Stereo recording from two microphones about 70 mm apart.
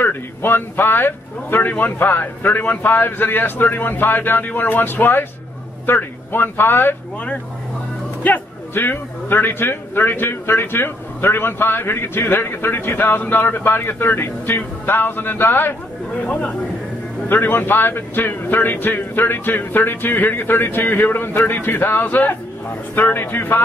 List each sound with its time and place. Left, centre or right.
0.0 s a man's voice: left
8.2 s a man's voice: left
16.3 s speech: centre
17.3 s speech: left